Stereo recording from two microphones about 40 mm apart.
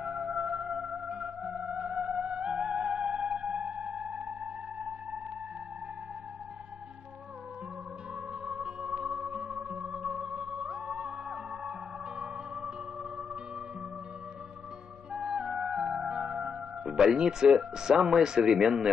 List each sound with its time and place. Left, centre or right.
0.0 s theremin: right
1.7 s music: right
8.5 s music: centre
15.1 s music: right